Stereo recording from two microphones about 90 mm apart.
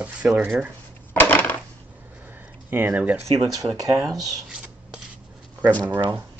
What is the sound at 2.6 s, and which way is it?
Speech, 20° right (ahead or behind).